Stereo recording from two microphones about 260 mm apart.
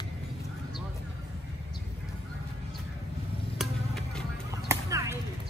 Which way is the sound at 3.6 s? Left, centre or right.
Centre.